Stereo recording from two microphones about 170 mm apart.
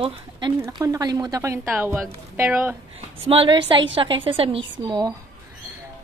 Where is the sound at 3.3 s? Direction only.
30° right (ahead or behind).